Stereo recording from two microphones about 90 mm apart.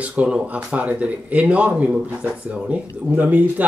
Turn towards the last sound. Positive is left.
turn(degrees=-20)  # may be behind; listen again after turning